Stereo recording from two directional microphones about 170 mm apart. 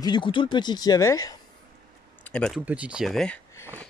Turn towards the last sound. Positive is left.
turn(degrees=5)  # may be behind; listen again after turning